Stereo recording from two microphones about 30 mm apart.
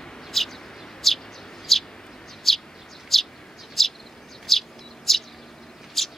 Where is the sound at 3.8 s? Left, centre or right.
Centre.